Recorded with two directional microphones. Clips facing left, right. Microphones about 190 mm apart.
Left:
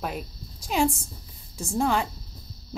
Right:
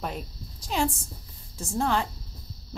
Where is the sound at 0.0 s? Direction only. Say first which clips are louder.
Left 2 dB; 10° left (ahead or behind).